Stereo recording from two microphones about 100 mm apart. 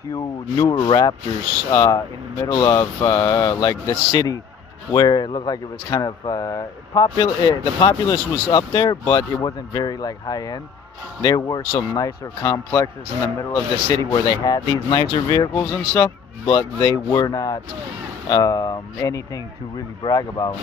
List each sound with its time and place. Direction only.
0.1 s speech: 35° left (ahead or behind)
0.7 s rub: 55° left (ahead or behind)
1.7 s speech: 35° left (ahead or behind)
15.9 s a man's voice: 25° left (ahead or behind)
16.5 s speech: 40° left (ahead or behind)